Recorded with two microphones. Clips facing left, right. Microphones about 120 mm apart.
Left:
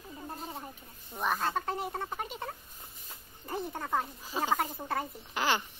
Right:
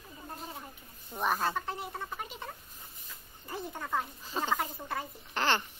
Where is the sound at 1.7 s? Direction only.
50° left (ahead or behind).